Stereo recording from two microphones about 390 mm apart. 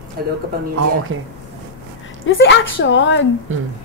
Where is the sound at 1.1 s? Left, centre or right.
Right.